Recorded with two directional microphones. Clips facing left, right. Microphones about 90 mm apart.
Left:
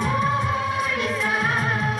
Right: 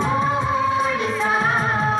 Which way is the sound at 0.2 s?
25° right (ahead or behind).